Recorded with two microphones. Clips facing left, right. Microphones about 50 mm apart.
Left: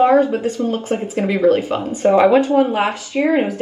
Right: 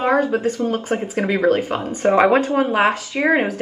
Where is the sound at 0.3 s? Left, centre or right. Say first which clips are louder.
Even; right.